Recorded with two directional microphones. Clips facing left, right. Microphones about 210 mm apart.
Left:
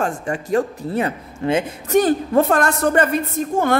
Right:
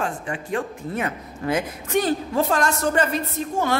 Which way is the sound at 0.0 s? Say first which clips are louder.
Left 5 dB; 45° left (ahead or behind).